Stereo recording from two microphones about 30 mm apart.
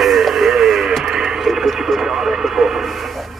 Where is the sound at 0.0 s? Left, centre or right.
Centre.